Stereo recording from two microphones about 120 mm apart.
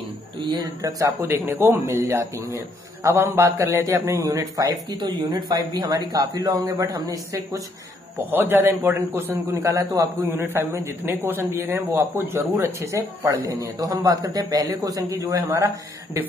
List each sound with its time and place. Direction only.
0.4 s a man's voice: 35° right (ahead or behind)
10.2 s a man's voice: 20° right (ahead or behind)